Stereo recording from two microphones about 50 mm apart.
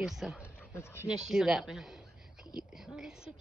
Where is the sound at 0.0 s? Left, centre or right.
Centre.